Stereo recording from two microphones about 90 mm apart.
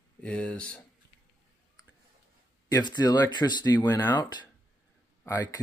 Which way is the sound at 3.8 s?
20° left (ahead or behind).